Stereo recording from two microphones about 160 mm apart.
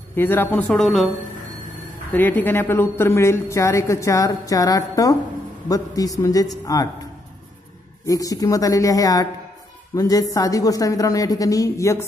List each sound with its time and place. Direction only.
0.1 s speech: 15° left (ahead or behind)
2.1 s a woman's voice: 10° left (ahead or behind)
8.1 s a woman's voice: 20° left (ahead or behind)